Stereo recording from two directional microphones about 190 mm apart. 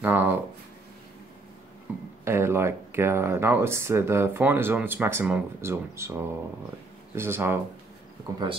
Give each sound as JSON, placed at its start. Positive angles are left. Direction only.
{"t": 0.0, "sound": "a sound", "side_deg": -10}
{"t": 2.2, "sound": "speech", "side_deg": -15}
{"t": 7.2, "sound": "speech", "side_deg": -10}